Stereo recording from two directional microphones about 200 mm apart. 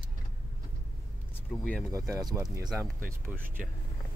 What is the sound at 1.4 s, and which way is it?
Speech, 5° left (ahead or behind).